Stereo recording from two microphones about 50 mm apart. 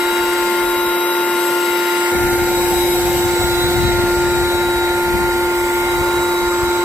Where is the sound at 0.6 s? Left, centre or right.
Left.